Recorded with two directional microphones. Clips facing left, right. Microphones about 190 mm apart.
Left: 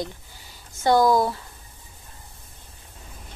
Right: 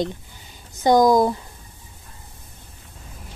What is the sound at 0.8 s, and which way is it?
Speech, 15° right (ahead or behind).